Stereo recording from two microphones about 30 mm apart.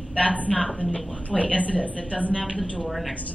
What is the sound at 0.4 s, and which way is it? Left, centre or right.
Speech, left.